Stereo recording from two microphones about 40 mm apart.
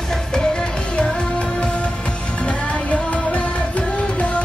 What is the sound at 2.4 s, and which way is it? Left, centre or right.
Music, left.